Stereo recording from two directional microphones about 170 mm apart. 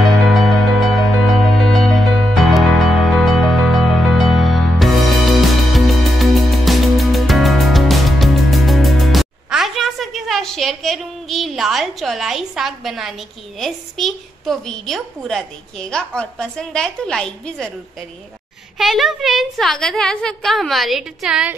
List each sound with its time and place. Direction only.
0.0 s music: centre (ahead or behind)
13.6 s a woman's voice: centre (ahead or behind)
18.8 s a woman's voice: centre (ahead or behind)